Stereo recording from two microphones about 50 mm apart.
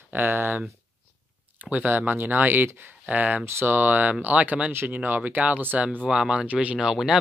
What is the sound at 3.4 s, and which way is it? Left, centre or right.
Speech, right.